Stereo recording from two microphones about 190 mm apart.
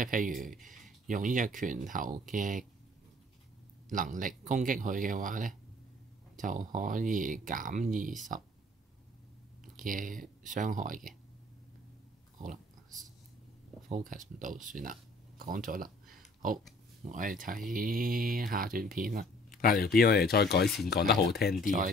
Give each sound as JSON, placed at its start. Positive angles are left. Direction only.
{"t": 0.0, "sound": "speech", "side_deg": -45}
{"t": 3.9, "sound": "speech", "side_deg": -45}
{"t": 9.8, "sound": "speech", "side_deg": -45}
{"t": 12.4, "sound": "pig", "side_deg": -45}
{"t": 13.8, "sound": "speech", "side_deg": -40}
{"t": 19.5, "sound": "speech", "side_deg": 50}
{"t": 20.6, "sound": "speech", "side_deg": 0}
{"t": 20.9, "sound": "speech", "side_deg": 60}